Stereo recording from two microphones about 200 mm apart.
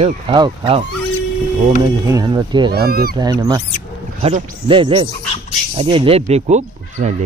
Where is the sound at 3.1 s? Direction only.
20° right (ahead or behind).